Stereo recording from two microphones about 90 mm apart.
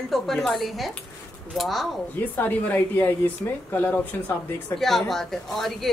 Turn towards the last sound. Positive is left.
turn(degrees=0)  # may be behind; listen again after turning